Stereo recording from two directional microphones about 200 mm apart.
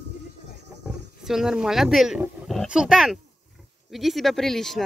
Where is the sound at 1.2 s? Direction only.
Centre (ahead or behind).